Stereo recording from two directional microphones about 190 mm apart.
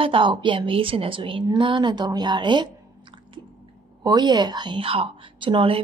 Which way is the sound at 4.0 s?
20° right (ahead or behind).